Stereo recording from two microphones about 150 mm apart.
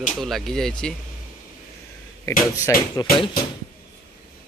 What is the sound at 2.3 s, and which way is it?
Speech, 20° left (ahead or behind).